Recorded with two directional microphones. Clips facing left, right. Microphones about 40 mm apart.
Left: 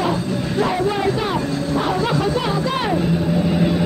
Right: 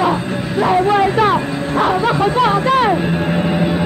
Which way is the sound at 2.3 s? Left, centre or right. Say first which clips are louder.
Right 6 dB; right.